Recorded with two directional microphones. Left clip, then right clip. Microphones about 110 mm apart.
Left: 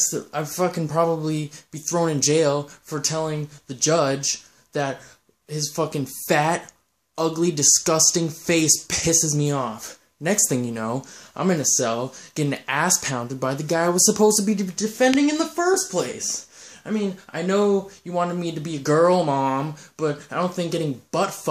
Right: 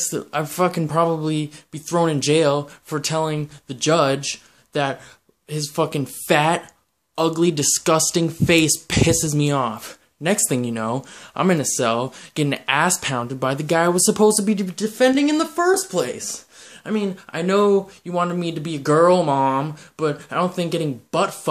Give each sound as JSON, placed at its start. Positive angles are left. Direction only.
{"t": 0.1, "sound": "speech", "side_deg": -10}
{"t": 2.9, "sound": "speech", "side_deg": -15}
{"t": 9.5, "sound": "speech", "side_deg": -20}
{"t": 10.5, "sound": "speech", "side_deg": -5}
{"t": 11.3, "sound": "speech", "side_deg": -20}